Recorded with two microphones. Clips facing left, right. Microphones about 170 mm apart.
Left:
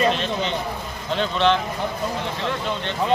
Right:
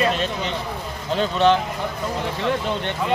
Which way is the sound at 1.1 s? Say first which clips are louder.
Right 2 dB; 40° right (ahead or behind).